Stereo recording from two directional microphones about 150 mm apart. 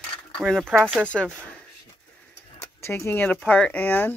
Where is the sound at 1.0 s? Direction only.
5° left (ahead or behind).